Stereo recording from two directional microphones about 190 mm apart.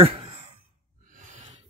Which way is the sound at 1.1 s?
40° right (ahead or behind).